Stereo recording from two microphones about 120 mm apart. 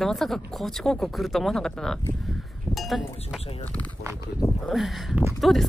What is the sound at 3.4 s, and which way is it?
Speech, 55° left (ahead or behind).